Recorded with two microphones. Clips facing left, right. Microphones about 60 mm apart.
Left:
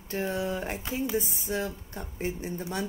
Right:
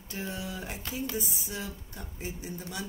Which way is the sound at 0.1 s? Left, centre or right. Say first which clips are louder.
Left 7 dB; left.